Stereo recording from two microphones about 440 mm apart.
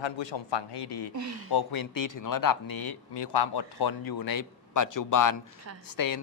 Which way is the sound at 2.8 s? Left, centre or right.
Left.